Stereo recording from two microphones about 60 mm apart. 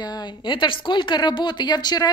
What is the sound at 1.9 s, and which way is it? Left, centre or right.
Speech, left.